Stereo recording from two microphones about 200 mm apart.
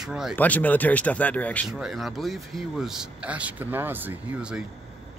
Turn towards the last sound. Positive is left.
turn(degrees=-5)  # may be behind; listen again after turning